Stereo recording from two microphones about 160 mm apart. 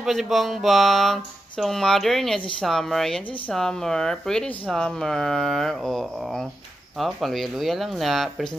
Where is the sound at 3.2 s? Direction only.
35° left (ahead or behind).